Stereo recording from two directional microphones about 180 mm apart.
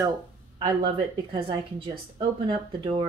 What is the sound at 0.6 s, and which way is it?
A woman's voice, 25° right (ahead or behind).